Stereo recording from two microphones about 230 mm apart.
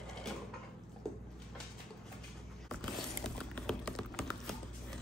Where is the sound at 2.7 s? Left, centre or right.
Centre.